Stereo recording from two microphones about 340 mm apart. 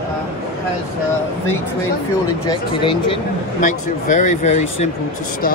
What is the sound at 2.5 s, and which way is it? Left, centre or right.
Speech, centre.